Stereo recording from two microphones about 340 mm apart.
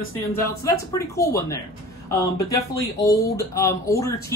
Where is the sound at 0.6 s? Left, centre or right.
Centre.